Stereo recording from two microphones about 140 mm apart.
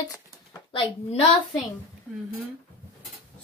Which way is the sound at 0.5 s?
40° left (ahead or behind).